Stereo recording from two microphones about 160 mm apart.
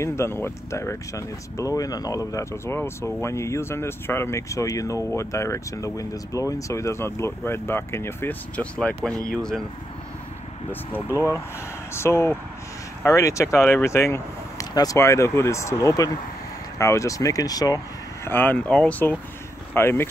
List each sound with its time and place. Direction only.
0.0 s speech: 15° left (ahead or behind)
11.1 s speech: 15° left (ahead or behind)
18.2 s speech: 10° left (ahead or behind)